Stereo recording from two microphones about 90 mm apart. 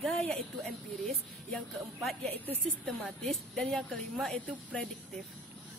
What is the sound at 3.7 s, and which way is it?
Speech, 5° left (ahead or behind).